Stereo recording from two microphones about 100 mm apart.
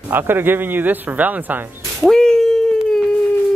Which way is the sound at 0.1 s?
20° right (ahead or behind).